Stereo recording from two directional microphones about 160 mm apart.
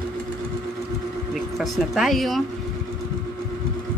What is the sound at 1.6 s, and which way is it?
Speech, centre (ahead or behind).